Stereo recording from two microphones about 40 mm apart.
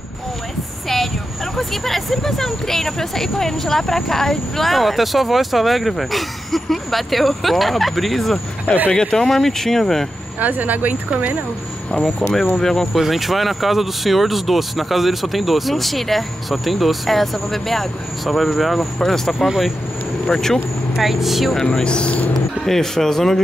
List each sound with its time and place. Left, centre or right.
1.6 s speech: centre
8.9 s speech: centre
9.2 s speech: centre
10.4 s speech: right
12.0 s speech: centre
12.9 s speech: centre
19.3 s speech: centre
20.2 s speech: centre
21.0 s speech: centre
21.5 s speech: centre
22.3 s speech: centre